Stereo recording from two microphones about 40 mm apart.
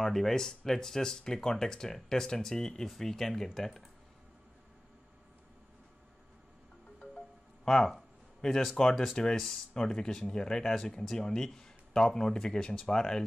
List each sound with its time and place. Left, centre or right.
0.0 s speech: centre
7.0 s music: centre
8.4 s speech: centre